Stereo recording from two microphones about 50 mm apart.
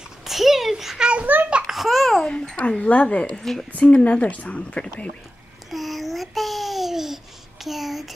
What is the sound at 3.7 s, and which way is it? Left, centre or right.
A woman's voice, left.